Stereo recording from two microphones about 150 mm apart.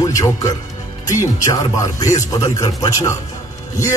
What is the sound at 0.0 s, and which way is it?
Speech, 25° left (ahead or behind).